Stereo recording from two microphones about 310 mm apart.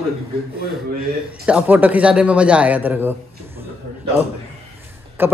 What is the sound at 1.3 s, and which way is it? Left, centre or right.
A man's voice, centre.